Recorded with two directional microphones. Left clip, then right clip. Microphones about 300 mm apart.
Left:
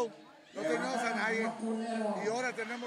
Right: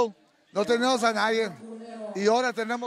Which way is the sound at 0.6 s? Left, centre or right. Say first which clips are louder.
Right 10 dB; right.